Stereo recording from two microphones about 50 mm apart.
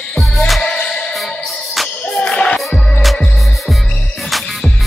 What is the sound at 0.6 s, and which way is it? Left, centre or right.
Music, centre.